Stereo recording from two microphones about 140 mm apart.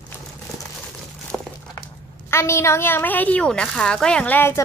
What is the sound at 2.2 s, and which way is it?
Speech, 20° left (ahead or behind).